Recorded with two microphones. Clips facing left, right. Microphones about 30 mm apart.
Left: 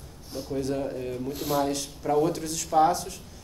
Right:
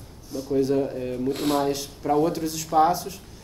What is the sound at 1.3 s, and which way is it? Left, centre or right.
Speech, right.